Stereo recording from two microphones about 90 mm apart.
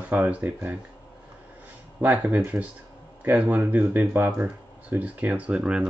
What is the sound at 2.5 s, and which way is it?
Speech, 20° right (ahead or behind).